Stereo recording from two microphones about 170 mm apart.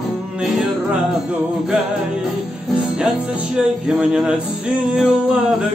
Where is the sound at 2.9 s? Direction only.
5° right (ahead or behind).